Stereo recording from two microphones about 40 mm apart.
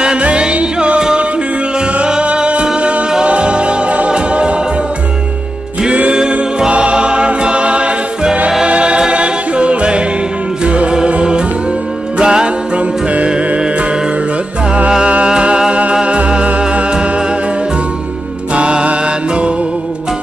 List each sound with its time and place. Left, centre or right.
0.0 s music: right
6.7 s music: right
15.2 s music: right
18.5 s music: right